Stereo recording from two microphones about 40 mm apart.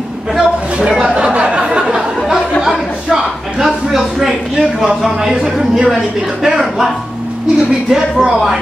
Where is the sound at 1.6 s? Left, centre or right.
Centre.